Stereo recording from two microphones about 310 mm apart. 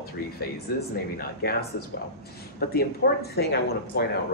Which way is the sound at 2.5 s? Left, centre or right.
Left.